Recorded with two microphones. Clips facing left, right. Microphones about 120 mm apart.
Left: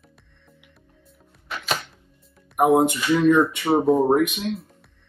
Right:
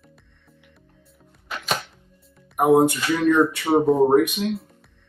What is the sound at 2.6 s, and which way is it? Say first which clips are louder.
Speech: right 1 dB; centre (ahead or behind).